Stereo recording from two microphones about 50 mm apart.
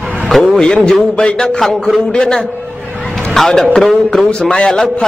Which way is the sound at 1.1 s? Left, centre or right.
Centre.